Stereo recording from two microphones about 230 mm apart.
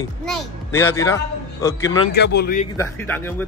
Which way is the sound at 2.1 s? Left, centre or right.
Left.